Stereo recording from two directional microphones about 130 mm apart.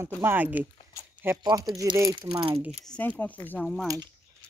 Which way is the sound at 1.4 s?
35° right (ahead or behind).